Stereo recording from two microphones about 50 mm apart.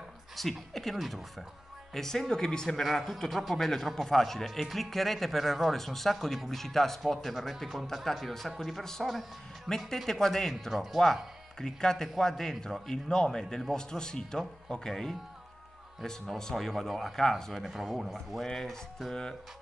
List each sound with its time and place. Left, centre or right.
0.4 s speech: centre
2.0 s a man's voice: centre
2.8 s a man's voice: centre
10.7 s a man's voice: centre
17.6 s a man's voice: centre